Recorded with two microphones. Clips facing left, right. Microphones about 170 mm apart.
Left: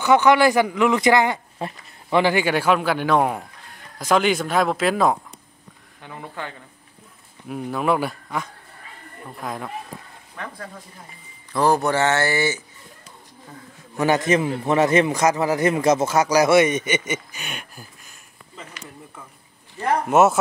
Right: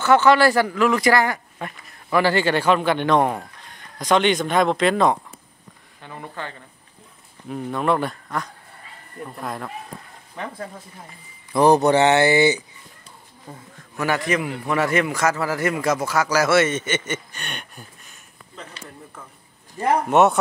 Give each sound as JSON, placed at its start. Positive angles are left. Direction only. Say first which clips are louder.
{"t": 0.0, "sound": "speech", "louder": "even", "side_deg": 15}
{"t": 2.3, "sound": "speech", "louder": "right 1 dB", "side_deg": 10}
{"t": 7.4, "sound": "speech", "louder": "even", "side_deg": 5}
{"t": 10.3, "sound": "speech", "louder": "right 3 dB", "side_deg": -25}
{"t": 13.9, "sound": "a man's voice", "louder": "left 4 dB", "side_deg": 20}
{"t": 20.1, "sound": "speech", "louder": "left 1 dB", "side_deg": 0}